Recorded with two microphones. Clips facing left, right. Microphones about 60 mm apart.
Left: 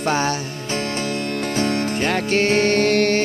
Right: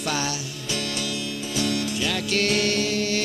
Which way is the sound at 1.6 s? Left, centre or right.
Left.